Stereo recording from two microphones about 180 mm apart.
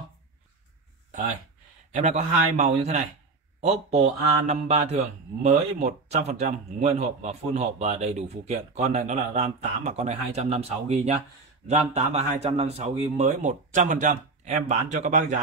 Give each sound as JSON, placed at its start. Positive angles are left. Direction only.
{"t": 1.9, "sound": "a man's voice", "side_deg": -40}